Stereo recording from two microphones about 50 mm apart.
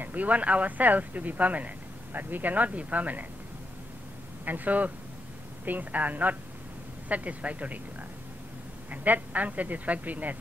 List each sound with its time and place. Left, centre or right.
0.0 s speech: right
4.5 s speech: right
8.9 s speech: right